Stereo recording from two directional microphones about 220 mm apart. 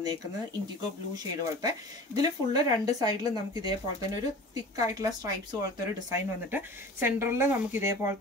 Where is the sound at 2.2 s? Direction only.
20° right (ahead or behind).